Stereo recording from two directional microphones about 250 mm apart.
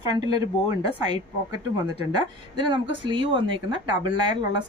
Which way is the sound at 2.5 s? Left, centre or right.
Centre.